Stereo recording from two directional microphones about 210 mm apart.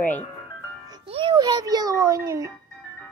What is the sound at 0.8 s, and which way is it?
A child's voice, 25° right (ahead or behind).